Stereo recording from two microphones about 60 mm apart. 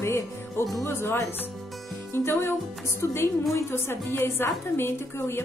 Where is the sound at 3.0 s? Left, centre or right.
Left.